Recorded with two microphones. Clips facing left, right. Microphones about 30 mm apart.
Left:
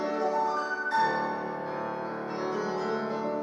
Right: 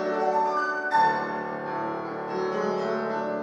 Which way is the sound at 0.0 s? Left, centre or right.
Centre.